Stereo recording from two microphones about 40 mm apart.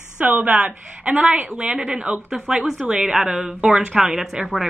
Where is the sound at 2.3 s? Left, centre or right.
Centre; by 3.8 s right.